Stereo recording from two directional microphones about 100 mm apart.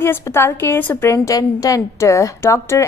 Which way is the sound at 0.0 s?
25° left (ahead or behind).